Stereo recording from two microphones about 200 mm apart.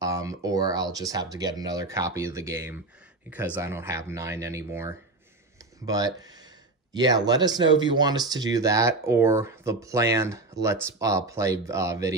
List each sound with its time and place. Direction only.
0.0 s speech: 15° right (ahead or behind)